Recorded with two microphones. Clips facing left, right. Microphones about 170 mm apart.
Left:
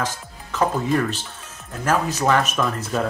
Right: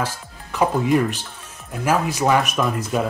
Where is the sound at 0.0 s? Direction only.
10° right (ahead or behind).